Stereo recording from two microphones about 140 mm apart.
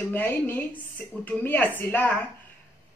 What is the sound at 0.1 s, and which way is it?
Speech, 15° left (ahead or behind).